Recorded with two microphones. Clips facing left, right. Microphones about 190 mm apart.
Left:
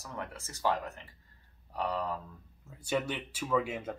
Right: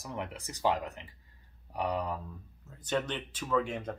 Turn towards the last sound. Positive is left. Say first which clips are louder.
# even
turn(degrees=5)  # may be behind; listen again after turning